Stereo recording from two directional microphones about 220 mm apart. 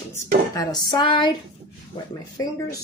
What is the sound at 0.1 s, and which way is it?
Speech, 15° left (ahead or behind).